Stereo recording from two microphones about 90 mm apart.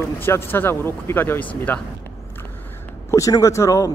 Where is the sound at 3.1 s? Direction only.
35° left (ahead or behind).